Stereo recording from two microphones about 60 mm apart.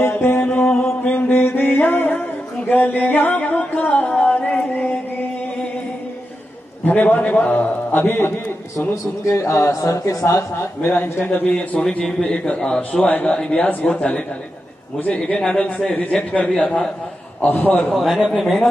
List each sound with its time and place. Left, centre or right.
0.0 s music: left
0.5 s mantra: centre
1.0 s a sound: left
6.8 s a man's voice: left
7.9 s a man's voice: left
8.7 s a man's voice: left
17.9 s a man's voice: centre